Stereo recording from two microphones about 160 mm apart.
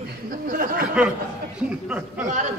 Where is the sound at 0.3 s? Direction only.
60° right (ahead or behind).